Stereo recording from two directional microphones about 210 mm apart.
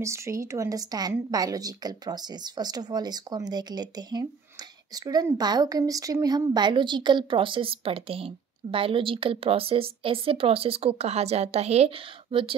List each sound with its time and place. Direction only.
0.0 s a woman's voice: 15° right (ahead or behind)